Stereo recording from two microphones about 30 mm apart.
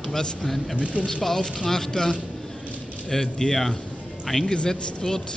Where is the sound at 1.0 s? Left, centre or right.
Left; by 4.5 s centre.